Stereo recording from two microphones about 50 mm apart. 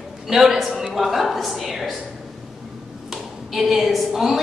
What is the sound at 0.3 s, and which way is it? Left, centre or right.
A woman's voice, centre.